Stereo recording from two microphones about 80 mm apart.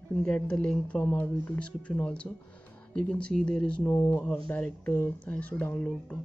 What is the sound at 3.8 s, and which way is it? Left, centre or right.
Speech, left.